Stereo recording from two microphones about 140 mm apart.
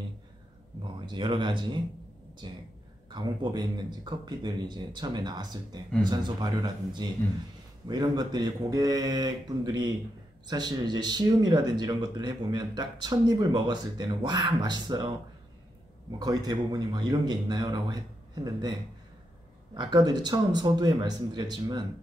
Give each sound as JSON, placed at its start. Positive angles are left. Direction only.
{"t": 1.0, "sound": "speech", "side_deg": -35}
{"t": 16.2, "sound": "speech", "side_deg": -30}